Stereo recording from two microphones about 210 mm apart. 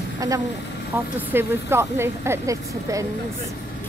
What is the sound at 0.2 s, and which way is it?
A woman's voice, 15° right (ahead or behind).